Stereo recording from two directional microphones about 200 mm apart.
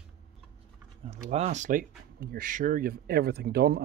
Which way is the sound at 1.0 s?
35° right (ahead or behind).